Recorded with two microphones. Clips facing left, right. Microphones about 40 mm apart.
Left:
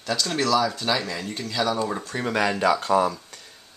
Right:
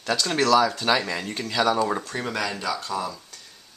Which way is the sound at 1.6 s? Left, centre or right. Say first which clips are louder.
Right 3 dB; centre.